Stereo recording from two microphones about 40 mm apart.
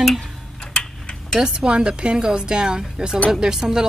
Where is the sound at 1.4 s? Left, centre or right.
Right.